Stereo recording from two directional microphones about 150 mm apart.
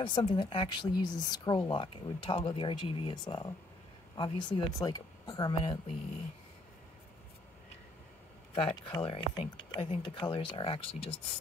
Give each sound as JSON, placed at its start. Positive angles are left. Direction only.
{"t": 0.0, "sound": "speech", "side_deg": 35}
{"t": 8.5, "sound": "speech", "side_deg": 35}